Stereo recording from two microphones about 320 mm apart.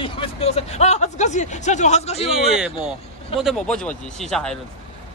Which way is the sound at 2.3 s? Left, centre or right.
Centre.